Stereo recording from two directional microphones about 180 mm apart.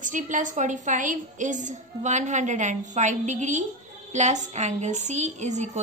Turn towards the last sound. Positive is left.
turn(degrees=-40)  # may be behind; listen again after turning